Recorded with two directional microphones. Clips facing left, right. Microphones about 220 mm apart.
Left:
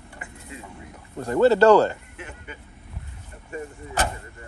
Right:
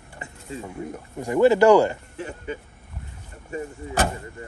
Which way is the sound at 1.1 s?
15° right (ahead or behind).